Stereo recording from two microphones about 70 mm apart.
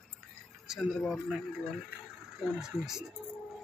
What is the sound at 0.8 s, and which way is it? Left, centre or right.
Speech, centre.